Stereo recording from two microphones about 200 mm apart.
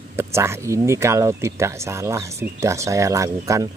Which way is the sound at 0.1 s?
10° right (ahead or behind).